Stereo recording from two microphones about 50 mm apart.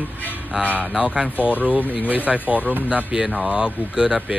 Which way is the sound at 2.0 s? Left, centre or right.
Right.